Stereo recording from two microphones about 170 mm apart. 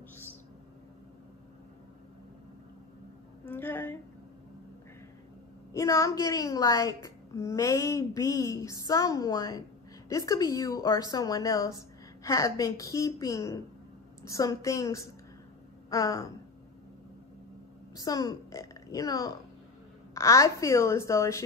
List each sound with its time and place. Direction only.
3.4 s a sound: 10° left (ahead or behind)
5.7 s a woman's voice: 20° left (ahead or behind)
17.9 s a woman's voice: 20° left (ahead or behind)